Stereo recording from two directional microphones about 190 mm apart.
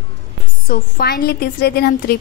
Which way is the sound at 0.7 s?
50° left (ahead or behind).